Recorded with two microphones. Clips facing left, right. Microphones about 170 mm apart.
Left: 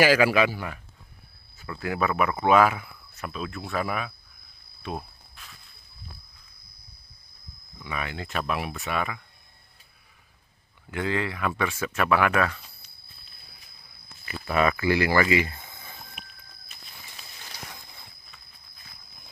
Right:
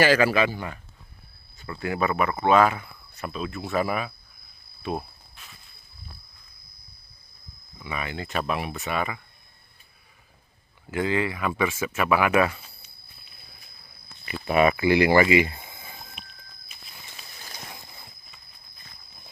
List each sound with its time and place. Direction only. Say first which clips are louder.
0.0 s a man's voice: even; 10° left (ahead or behind)
4.8 s zipper: right 4 dB; 5° right (ahead or behind)
7.8 s a man's voice: right 1 dB; centre (ahead or behind)
10.9 s a man's voice: right 3 dB; 5° right (ahead or behind)
14.2 s speech: right 3 dB; 15° right (ahead or behind)